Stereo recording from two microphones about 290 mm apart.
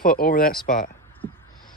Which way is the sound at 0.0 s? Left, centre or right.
Left.